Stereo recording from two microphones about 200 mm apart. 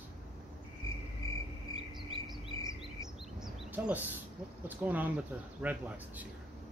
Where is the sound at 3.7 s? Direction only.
10° right (ahead or behind).